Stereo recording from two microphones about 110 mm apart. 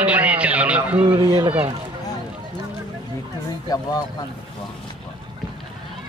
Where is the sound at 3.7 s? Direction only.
35° left (ahead or behind).